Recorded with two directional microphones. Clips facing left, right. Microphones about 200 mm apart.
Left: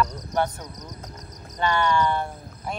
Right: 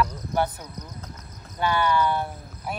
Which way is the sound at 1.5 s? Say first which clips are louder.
Even; 5° right (ahead or behind).